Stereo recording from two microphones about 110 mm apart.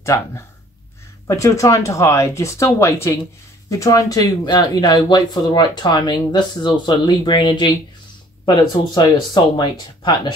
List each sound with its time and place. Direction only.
0.0 s speech: 25° left (ahead or behind); by 10.3 s 45° left (ahead or behind)